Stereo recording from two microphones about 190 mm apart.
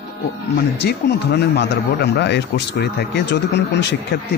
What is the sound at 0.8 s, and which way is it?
Speech, 60° left (ahead or behind).